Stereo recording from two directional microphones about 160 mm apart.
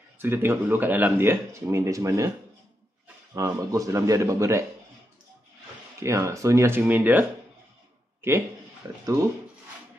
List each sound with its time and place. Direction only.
0.2 s speech: 15° right (ahead or behind)
3.3 s a man's voice: 20° right (ahead or behind)
5.9 s speech: 15° right (ahead or behind)